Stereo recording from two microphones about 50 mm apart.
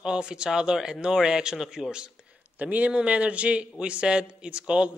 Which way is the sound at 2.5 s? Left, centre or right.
Right.